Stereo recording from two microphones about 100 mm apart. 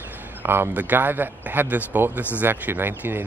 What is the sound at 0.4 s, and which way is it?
Speech, 20° right (ahead or behind).